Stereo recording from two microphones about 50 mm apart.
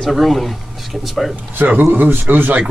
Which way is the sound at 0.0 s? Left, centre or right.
Centre.